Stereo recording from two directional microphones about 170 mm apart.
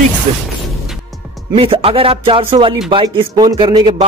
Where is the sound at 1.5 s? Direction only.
35° right (ahead or behind).